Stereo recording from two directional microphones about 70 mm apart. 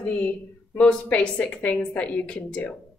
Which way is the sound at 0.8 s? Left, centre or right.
Centre.